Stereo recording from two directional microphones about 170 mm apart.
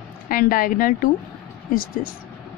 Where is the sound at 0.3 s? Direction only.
55° left (ahead or behind).